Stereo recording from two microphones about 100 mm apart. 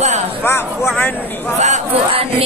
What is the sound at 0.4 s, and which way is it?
Speech, 25° left (ahead or behind).